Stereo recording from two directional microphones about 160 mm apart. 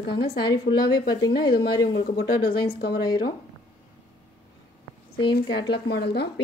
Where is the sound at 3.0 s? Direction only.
25° left (ahead or behind).